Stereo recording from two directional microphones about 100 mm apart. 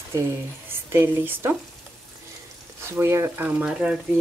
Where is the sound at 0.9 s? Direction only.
25° right (ahead or behind).